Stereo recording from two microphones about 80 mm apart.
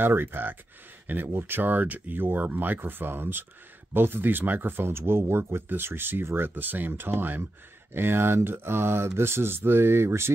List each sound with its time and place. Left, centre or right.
0.0 s speech: right